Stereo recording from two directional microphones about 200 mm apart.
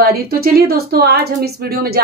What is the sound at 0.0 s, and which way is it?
A woman's voice, 50° right (ahead or behind).